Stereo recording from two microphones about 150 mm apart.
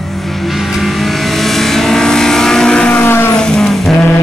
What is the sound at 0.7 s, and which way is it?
Vehicle, centre (ahead or behind).